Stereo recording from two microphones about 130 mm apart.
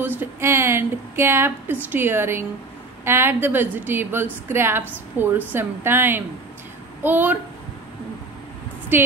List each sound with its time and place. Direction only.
0.0 s a woman's voice: 15° right (ahead or behind)
8.9 s a woman's voice: 15° right (ahead or behind)